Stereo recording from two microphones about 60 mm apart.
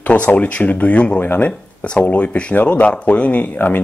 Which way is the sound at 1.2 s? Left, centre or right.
Left.